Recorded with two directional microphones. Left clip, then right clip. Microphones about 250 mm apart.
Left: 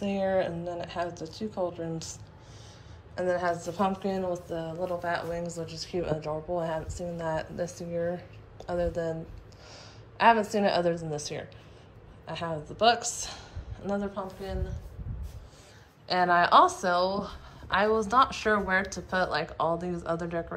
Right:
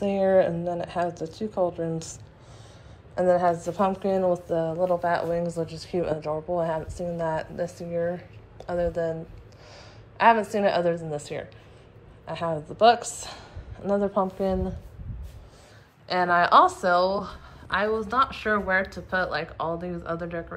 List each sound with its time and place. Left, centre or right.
0.0 s a woman's voice: centre
1.0 s a woman's voice: left
1.3 s a woman's voice: centre
3.3 s a woman's voice: left
3.6 s a woman's voice: centre
10.1 s a woman's voice: centre
16.1 s a woman's voice: centre